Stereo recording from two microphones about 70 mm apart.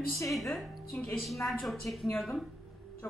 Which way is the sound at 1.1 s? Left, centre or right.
Centre.